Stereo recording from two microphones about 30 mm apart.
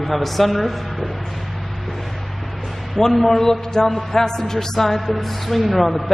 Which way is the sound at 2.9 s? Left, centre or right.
Centre.